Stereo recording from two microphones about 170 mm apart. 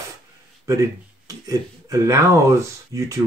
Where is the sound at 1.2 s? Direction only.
20° right (ahead or behind).